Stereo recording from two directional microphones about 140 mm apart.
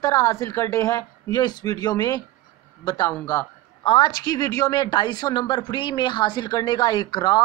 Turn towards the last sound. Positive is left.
turn(degrees=30)  # may be behind; listen again after turning